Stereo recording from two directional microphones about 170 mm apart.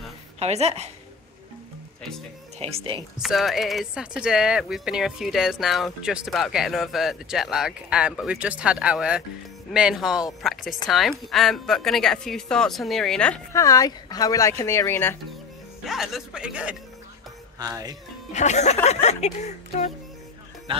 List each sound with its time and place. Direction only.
0.4 s a woman's voice: 40° right (ahead or behind)
2.6 s a woman's voice: 35° right (ahead or behind)
3.2 s speech: centre (ahead or behind)
13.5 s speech: 20° left (ahead or behind)
15.8 s speech: centre (ahead or behind)
17.6 s speech: 20° right (ahead or behind)
18.3 s speech: 40° left (ahead or behind)